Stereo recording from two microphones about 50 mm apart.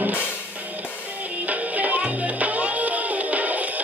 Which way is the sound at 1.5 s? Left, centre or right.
Right.